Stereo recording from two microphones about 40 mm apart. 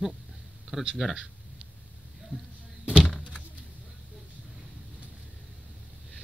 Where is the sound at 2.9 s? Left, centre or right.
Left.